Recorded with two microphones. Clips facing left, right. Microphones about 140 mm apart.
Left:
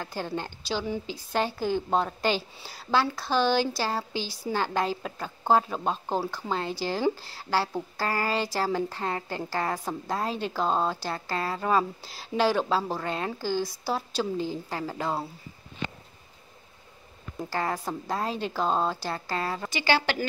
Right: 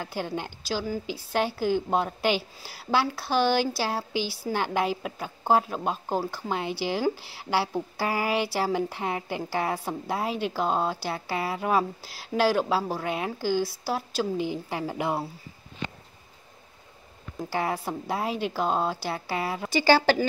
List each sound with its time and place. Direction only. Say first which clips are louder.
0.0 s a woman's voice: right 1 dB; 10° right (ahead or behind)
14.4 s a woman's voice: right 2 dB; 15° right (ahead or behind)
17.5 s a woman's voice: right 1 dB; 10° right (ahead or behind)
19.7 s speech: right 7 dB; 35° right (ahead or behind)